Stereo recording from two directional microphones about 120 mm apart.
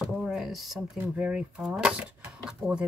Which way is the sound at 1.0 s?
10° right (ahead or behind).